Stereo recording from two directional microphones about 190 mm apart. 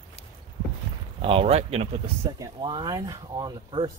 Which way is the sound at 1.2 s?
30° right (ahead or behind).